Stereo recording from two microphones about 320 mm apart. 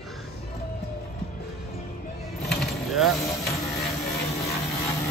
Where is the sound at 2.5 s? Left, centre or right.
Centre.